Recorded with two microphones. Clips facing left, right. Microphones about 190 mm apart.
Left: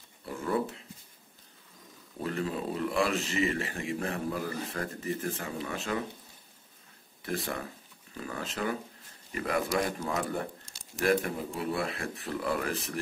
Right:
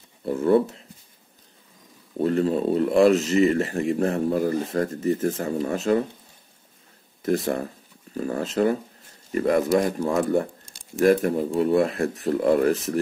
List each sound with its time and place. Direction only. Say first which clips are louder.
0.2 s a sound: right 12 dB; 40° right (ahead or behind)
2.2 s speech: right 11 dB; 35° right (ahead or behind)
7.2 s speech: right 11 dB; 40° right (ahead or behind)